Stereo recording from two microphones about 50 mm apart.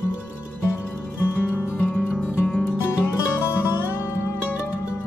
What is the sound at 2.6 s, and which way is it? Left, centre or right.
Music, left.